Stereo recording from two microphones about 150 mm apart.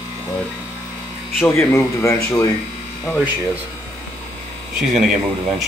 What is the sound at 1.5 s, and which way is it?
Speech, 20° left (ahead or behind).